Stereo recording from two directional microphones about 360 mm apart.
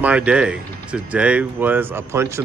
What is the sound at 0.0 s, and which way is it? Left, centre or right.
Speech, centre.